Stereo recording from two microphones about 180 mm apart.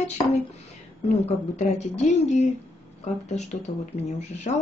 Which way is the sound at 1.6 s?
40° left (ahead or behind).